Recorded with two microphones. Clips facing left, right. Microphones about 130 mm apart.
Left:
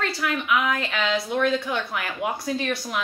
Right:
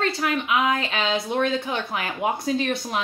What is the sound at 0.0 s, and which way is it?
A woman's voice, 25° right (ahead or behind).